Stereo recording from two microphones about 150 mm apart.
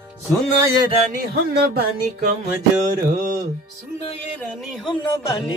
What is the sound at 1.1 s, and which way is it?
Music, 90° right.